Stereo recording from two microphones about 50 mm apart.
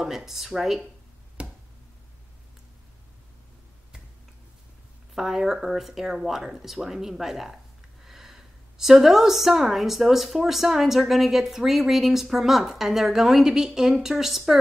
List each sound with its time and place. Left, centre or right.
0.0 s speech: centre
1.4 s a sound: right
5.1 s speech: centre